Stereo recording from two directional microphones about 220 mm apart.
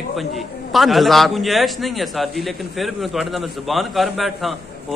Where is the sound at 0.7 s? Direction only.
Centre (ahead or behind).